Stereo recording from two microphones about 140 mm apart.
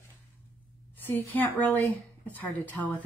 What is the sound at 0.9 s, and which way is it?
Speech, 15° left (ahead or behind).